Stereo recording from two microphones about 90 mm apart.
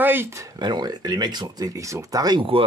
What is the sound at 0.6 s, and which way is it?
Speech, 55° right (ahead or behind).